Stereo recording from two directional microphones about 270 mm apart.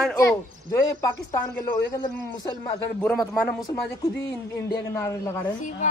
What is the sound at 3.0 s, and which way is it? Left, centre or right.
Speech, centre.